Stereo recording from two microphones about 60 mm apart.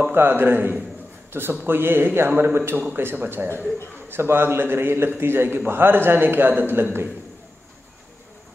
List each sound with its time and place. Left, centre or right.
0.1 s a man's voice: right